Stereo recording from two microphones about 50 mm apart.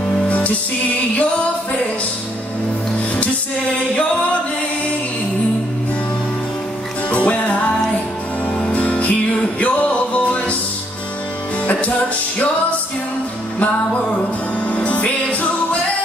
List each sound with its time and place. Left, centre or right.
7.1 s music: left
8.7 s music: left
11.6 s music: left
14.7 s music: left